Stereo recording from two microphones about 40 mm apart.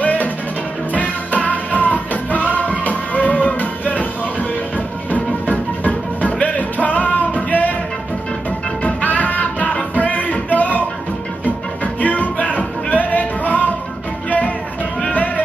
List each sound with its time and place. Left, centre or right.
0.0 s music: left
15.0 s music: left